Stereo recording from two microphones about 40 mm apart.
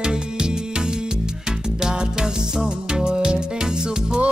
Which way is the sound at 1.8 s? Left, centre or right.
Centre.